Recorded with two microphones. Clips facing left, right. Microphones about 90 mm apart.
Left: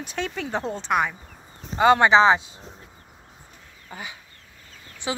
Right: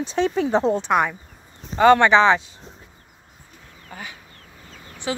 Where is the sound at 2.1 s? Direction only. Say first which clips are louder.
Right 1 dB; 25° left (ahead or behind).